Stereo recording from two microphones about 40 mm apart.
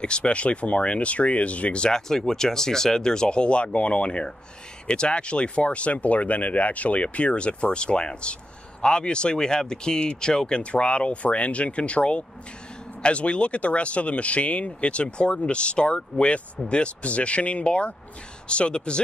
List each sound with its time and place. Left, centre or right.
0.0 s speech: left
1.9 s speech: centre